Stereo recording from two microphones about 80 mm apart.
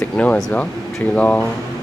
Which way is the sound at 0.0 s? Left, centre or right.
Centre.